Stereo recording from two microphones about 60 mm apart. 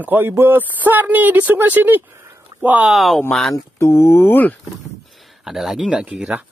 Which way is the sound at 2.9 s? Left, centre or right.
Centre.